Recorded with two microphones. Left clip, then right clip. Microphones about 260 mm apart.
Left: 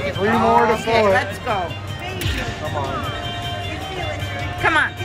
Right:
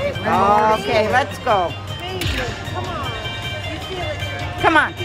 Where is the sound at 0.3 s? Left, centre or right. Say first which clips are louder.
Right 1 dB; right.